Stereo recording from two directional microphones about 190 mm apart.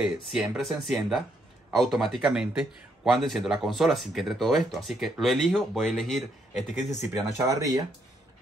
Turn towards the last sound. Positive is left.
turn(degrees=-15)  # may be behind; listen again after turning